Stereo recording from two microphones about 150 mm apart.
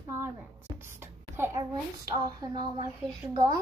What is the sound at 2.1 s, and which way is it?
Speech, 25° right (ahead or behind).